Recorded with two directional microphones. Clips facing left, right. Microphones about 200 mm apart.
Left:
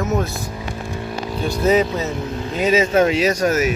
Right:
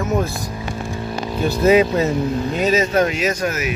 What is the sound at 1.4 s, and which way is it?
Speech, 5° right (ahead or behind).